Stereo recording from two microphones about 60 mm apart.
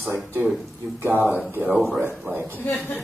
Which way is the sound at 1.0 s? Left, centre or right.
Right.